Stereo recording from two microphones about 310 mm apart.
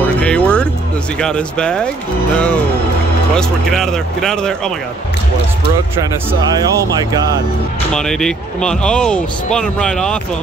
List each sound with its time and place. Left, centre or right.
0.2 s music: centre
1.2 s speech: centre
7.0 s speech: centre
7.9 s speech: centre